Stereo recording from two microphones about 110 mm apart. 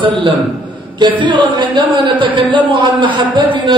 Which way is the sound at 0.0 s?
50° right (ahead or behind).